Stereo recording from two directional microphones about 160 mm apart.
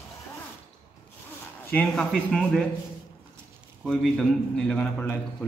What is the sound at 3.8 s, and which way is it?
A man's voice, 5° left (ahead or behind).